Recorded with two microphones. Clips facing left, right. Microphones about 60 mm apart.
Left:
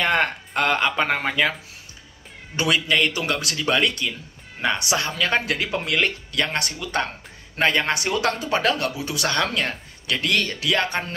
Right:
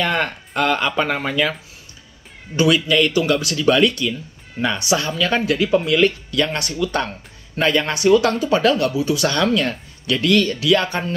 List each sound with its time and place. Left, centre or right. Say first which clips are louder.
0.0 s speech: even; left
2.5 s speech: right 5 dB; left
4.9 s speech: right 6 dB; left
5.9 s speech: right 6 dB; left
9.3 s speech: right 5 dB; left